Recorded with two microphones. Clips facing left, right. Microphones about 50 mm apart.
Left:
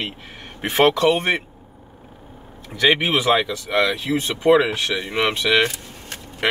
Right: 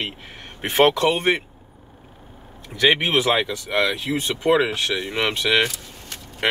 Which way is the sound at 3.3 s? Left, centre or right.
Centre.